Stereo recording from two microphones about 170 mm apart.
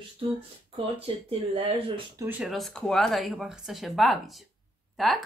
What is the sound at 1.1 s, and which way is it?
Speech, 30° right (ahead or behind).